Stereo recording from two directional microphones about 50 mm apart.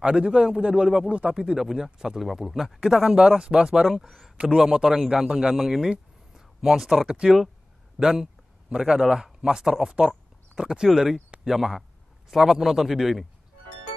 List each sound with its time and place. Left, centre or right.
0.0 s a man's voice: centre
2.8 s a man's voice: centre
3.8 s a man's voice: centre
9.9 s a sound: centre
10.9 s a man's voice: centre